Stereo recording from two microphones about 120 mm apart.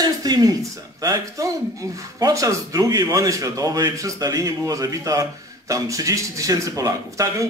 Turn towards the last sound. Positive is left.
turn(degrees=-25)  # may be behind; listen again after turning